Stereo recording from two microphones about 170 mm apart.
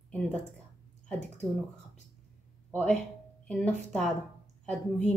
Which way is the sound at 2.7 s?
5° left (ahead or behind).